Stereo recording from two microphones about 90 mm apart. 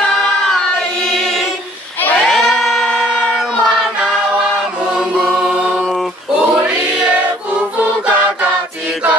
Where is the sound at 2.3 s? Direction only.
Centre (ahead or behind).